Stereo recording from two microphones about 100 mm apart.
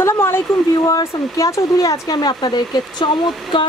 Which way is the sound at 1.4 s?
35° left (ahead or behind).